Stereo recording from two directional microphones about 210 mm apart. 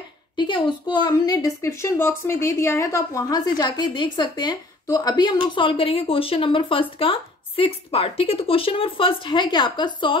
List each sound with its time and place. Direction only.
0.4 s a woman's voice: 20° left (ahead or behind)